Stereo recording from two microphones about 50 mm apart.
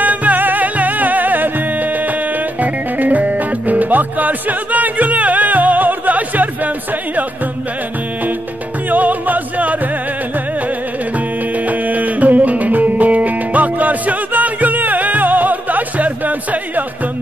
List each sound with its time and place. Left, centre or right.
0.0 s music: right
8.9 s music: right
11.6 s music: right